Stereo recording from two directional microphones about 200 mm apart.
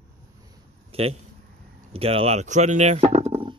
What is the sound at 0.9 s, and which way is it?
Speech, 30° right (ahead or behind).